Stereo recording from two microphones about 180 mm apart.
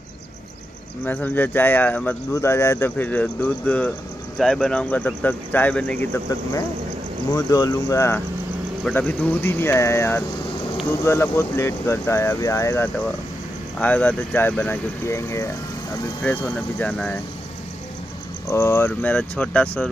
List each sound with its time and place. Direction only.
1.0 s speech: 10° left (ahead or behind)
7.2 s speech: 20° left (ahead or behind)
18.5 s speech: 15° left (ahead or behind)